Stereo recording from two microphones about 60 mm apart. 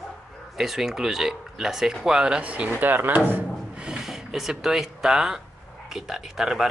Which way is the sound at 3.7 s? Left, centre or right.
Centre.